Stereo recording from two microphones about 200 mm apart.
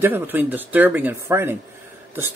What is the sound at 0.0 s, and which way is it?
Speech, 10° right (ahead or behind).